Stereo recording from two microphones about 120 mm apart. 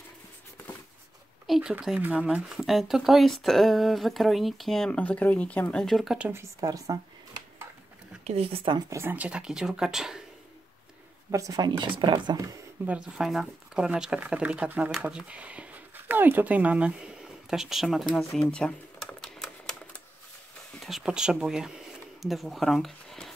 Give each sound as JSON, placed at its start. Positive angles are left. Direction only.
{"t": 1.5, "sound": "speech", "side_deg": -5}
{"t": 6.1, "sound": "speech", "side_deg": -15}
{"t": 6.6, "sound": "speech", "side_deg": -30}
{"t": 8.2, "sound": "speech", "side_deg": -60}
{"t": 8.9, "sound": "speech", "side_deg": -15}
{"t": 11.3, "sound": "speech", "side_deg": -30}
{"t": 12.8, "sound": "speech", "side_deg": -10}
{"t": 18.1, "sound": "typewriter", "side_deg": 5}
{"t": 20.8, "sound": "speech", "side_deg": -5}